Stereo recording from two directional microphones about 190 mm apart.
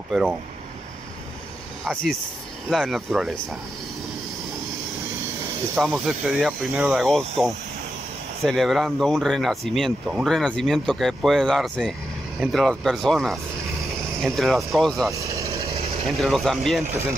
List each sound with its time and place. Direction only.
0.1 s speech: centre (ahead or behind)
2.7 s speech: centre (ahead or behind)
5.8 s speech: centre (ahead or behind)
15.0 s vehicle: 15° right (ahead or behind)
15.7 s vehicle: 35° right (ahead or behind)
16.1 s speech: centre (ahead or behind)